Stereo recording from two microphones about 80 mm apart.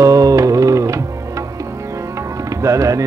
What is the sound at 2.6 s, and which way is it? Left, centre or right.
Music, right.